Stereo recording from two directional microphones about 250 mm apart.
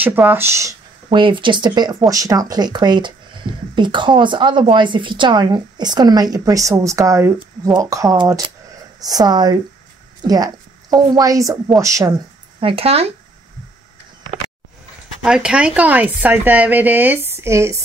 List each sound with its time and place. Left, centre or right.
0.0 s speech: centre; by 13.1 s right
15.2 s speech: centre